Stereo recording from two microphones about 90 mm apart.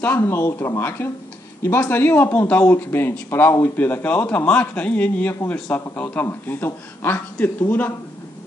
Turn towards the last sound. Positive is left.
turn(degrees=20)  # may be behind; listen again after turning